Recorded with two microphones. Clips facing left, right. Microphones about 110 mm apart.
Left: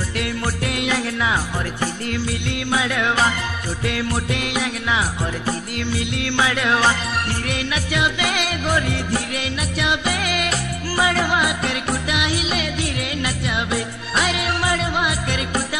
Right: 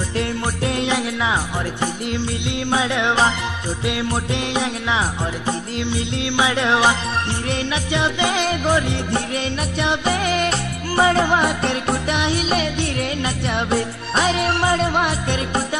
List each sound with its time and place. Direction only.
0.1 s music: 30° right (ahead or behind)
0.9 s speech: 20° right (ahead or behind)
7.4 s music: 30° right (ahead or behind)